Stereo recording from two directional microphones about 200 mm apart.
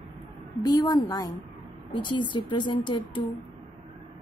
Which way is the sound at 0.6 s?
20° left (ahead or behind).